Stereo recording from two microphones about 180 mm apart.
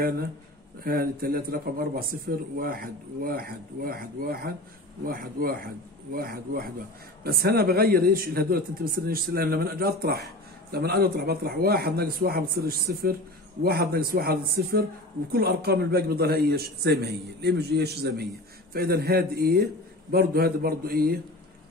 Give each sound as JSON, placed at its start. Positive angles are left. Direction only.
{"t": 0.8, "sound": "speech", "side_deg": -55}